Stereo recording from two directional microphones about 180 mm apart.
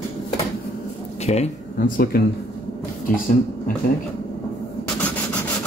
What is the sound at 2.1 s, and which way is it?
Speech, 55° left (ahead or behind).